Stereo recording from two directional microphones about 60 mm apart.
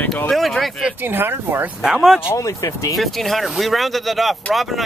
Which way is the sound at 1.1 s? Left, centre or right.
Right.